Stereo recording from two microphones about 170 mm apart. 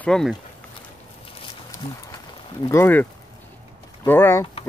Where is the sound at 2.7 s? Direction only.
10° left (ahead or behind).